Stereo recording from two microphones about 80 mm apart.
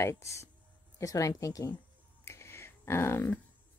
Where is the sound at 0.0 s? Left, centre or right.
Left.